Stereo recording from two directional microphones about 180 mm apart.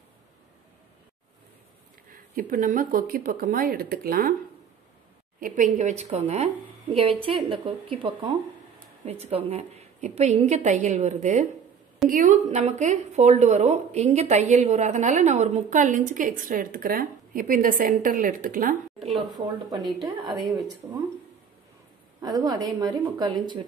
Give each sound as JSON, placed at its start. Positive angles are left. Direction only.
{"t": 2.0, "sound": "speech", "side_deg": -50}
{"t": 5.4, "sound": "a woman's voice", "side_deg": -45}
{"t": 18.9, "sound": "a sound", "side_deg": 0}
{"t": 19.3, "sound": "a woman's voice", "side_deg": -25}
{"t": 22.2, "sound": "speech", "side_deg": -20}